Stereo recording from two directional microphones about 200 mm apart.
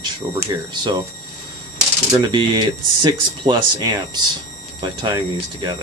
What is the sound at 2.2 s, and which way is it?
Speech, 20° right (ahead or behind).